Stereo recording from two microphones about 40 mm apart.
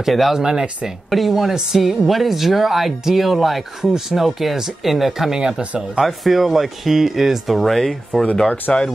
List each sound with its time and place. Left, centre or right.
0.0 s speech: centre
1.1 s speech: centre
8.7 s speech: left